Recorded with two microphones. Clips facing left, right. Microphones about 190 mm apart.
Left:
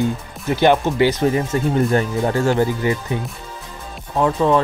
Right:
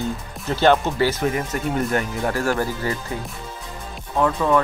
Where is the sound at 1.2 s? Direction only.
30° left (ahead or behind).